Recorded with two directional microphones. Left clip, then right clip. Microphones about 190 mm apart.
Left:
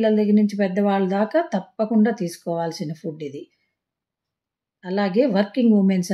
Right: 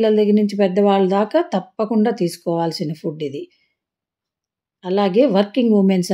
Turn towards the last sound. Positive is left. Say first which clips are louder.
# right 4 dB
turn(degrees=-25)  # may be behind; listen again after turning